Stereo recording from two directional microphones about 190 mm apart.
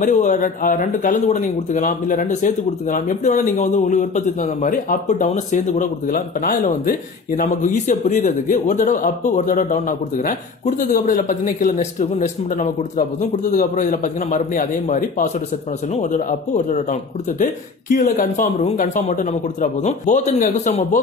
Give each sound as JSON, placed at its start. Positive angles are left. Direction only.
{"t": 0.0, "sound": "speech", "side_deg": 40}